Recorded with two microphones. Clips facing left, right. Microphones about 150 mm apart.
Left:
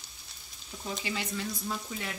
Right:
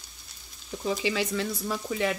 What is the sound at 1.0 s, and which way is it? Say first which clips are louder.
Frying: right 7 dB; 90° right.